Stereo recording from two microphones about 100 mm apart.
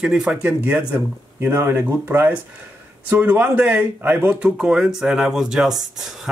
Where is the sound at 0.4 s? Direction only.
15° right (ahead or behind).